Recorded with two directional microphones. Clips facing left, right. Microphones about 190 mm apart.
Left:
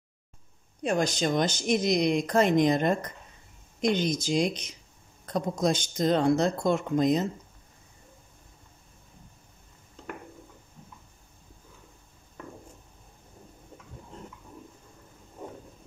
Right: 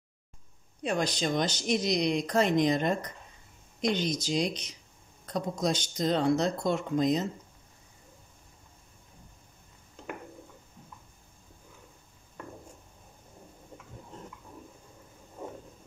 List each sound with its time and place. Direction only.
0.8 s speech: 45° left (ahead or behind)